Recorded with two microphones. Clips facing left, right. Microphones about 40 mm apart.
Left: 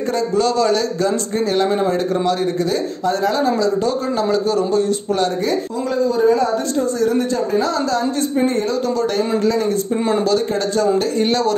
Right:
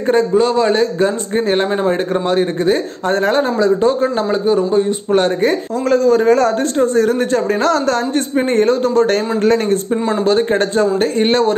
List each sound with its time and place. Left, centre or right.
0.1 s a man's voice: right
5.1 s a man's voice: right
5.9 s speech: right
6.8 s speech: right
10.2 s a man's voice: right